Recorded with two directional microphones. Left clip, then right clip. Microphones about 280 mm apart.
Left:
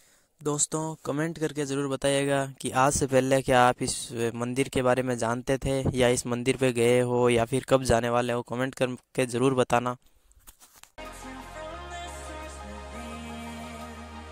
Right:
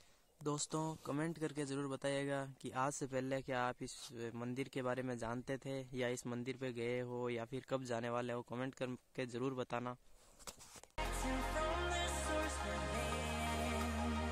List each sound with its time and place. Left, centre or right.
0.4 s speech: left